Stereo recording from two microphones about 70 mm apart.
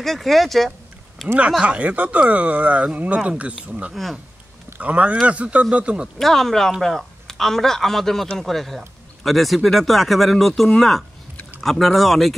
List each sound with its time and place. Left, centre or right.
0.0 s a man's voice: centre
1.6 s speech: centre
3.9 s a man's voice: centre
4.7 s a man's voice: centre
6.1 s a man's voice: centre